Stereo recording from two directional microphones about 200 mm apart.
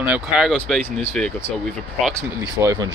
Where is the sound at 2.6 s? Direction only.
20° right (ahead or behind).